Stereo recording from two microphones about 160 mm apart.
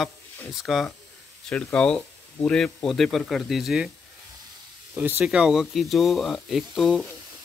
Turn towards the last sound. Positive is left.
turn(degrees=0)  # may be behind; listen again after turning